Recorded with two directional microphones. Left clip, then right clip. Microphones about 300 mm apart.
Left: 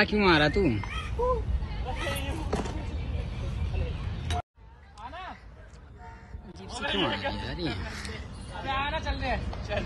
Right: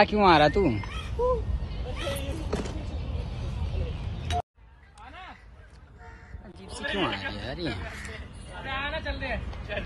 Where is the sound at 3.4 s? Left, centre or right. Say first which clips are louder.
Left 1 dB; centre.